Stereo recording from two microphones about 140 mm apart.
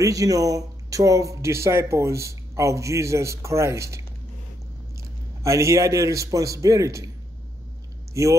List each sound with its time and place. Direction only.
0.0 s speech: 25° right (ahead or behind)
5.4 s speech: 20° right (ahead or behind)
8.1 s speech: 20° right (ahead or behind)